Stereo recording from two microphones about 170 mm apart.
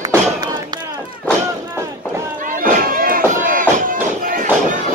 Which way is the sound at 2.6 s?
55° right (ahead or behind).